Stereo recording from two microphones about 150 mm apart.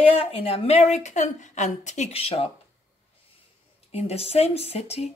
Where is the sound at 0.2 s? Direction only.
40° left (ahead or behind).